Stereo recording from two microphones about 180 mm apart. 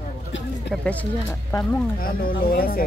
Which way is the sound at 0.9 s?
10° left (ahead or behind).